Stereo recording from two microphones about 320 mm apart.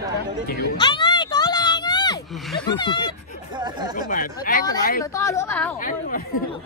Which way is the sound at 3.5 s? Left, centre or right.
Centre.